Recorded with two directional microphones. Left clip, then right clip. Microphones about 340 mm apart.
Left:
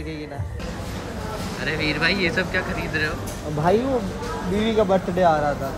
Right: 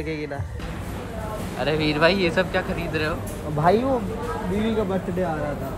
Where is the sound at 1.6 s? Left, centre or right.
Right.